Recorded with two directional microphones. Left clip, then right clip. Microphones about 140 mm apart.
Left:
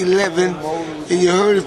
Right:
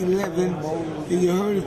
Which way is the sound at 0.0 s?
20° left (ahead or behind).